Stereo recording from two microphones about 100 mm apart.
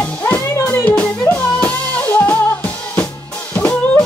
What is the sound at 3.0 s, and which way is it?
Drum, 15° left (ahead or behind).